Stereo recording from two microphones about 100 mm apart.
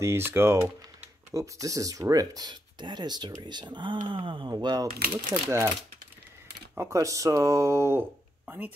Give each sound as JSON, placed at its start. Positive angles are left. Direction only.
{"t": 0.0, "sound": "speech", "side_deg": -25}
{"t": 6.7, "sound": "speech", "side_deg": -30}